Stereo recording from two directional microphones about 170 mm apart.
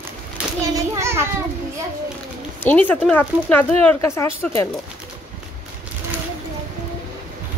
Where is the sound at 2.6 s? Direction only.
10° left (ahead or behind).